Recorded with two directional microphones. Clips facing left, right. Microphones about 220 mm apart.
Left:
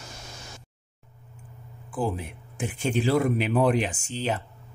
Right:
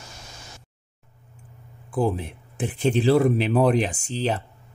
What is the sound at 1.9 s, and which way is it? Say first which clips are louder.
Speech: right 5 dB; 40° right (ahead or behind).